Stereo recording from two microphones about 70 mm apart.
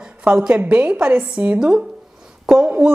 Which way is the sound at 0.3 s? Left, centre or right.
Centre.